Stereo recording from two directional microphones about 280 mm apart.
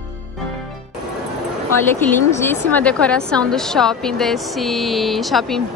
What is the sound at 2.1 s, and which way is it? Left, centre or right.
A woman's voice, centre.